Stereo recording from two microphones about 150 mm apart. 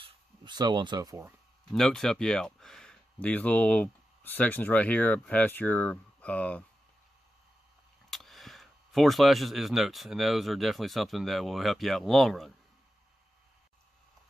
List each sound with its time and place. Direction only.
0.0 s a sound: 30° right (ahead or behind)
1.7 s speech: 5° left (ahead or behind)
8.1 s speech: centre (ahead or behind)